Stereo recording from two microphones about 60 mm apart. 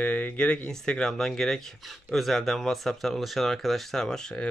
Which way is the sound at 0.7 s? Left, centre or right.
Centre.